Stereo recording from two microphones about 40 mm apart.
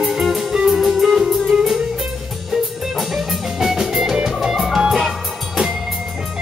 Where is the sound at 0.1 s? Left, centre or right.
Centre.